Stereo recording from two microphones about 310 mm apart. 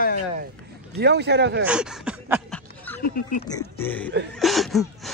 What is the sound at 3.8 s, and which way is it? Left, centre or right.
Speech, centre.